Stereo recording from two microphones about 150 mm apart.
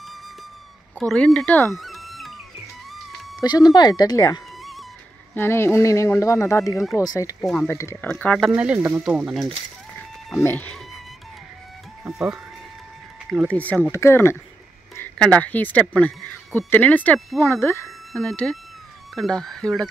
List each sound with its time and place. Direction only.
0.9 s speech: 5° left (ahead or behind)
1.8 s music: centre (ahead or behind)
3.4 s speech: 25° left (ahead or behind)
8.1 s speech: 10° left (ahead or behind)
8.5 s speech: 10° right (ahead or behind)
10.4 s speech: 10° left (ahead or behind)
12.0 s speech: 5° right (ahead or behind)
13.5 s speech: 10° left (ahead or behind)
17.8 s speech: 5° left (ahead or behind)